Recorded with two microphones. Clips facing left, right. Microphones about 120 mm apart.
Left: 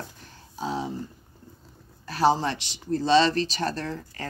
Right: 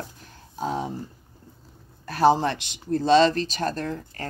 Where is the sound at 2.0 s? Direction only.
50° right (ahead or behind).